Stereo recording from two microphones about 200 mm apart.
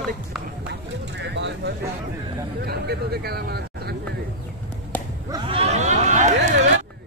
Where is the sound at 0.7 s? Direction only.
60° right (ahead or behind).